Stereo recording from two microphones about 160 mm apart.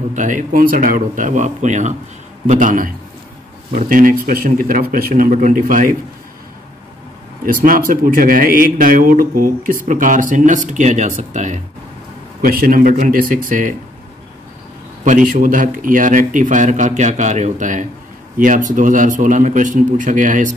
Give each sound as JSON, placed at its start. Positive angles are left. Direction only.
{"t": 0.1, "sound": "a man's voice", "side_deg": -50}
{"t": 3.9, "sound": "speech", "side_deg": -60}
{"t": 7.4, "sound": "speech", "side_deg": -60}
{"t": 12.4, "sound": "speech", "side_deg": -65}
{"t": 15.0, "sound": "a man's voice", "side_deg": -55}